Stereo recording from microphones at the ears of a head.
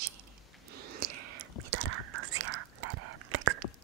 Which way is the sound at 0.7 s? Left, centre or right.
Right.